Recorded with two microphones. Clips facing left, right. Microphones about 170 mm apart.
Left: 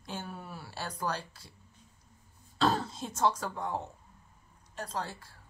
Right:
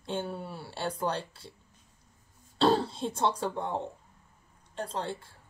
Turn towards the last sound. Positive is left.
turn(degrees=-25)  # may be behind; listen again after turning